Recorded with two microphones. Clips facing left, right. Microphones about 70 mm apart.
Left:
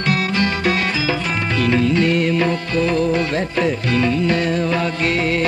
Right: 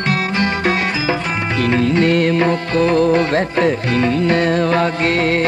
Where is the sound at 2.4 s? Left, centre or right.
Right.